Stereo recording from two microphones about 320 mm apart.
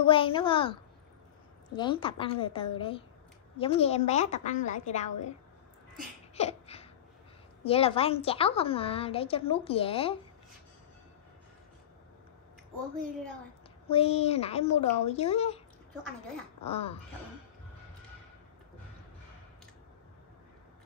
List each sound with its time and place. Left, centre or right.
0.0 s a woman's voice: centre
1.8 s a woman's voice: centre
6.3 s a sound: centre
7.6 s a woman's voice: centre
13.8 s speech: centre
16.6 s a woman's voice: centre